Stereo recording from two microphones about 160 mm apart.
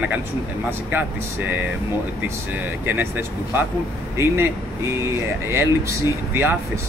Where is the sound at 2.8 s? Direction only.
15° right (ahead or behind).